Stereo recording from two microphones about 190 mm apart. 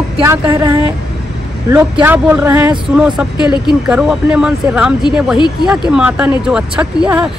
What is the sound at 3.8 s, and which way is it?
Speech, 5° right (ahead or behind).